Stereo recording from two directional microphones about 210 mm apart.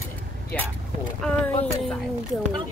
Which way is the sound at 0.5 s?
5° left (ahead or behind).